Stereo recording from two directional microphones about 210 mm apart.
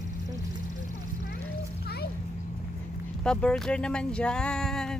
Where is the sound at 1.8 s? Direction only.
50° left (ahead or behind).